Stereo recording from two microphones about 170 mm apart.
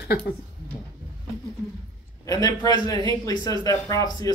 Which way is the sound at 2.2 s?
20° left (ahead or behind).